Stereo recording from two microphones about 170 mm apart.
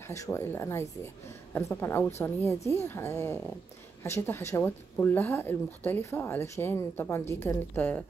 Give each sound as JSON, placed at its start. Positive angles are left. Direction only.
{"t": 0.1, "sound": "speech", "side_deg": 15}